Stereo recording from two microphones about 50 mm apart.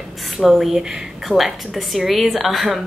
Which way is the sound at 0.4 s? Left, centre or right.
Centre.